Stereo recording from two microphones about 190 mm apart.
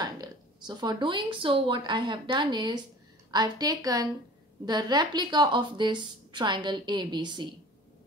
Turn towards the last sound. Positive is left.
turn(degrees=-25)  # may be behind; listen again after turning